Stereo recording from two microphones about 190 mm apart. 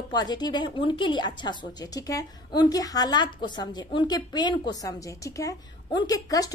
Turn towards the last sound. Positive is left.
turn(degrees=20)  # may be behind; listen again after turning